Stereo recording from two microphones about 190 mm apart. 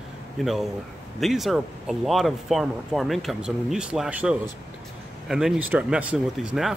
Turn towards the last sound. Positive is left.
turn(degrees=0)  # may be behind; listen again after turning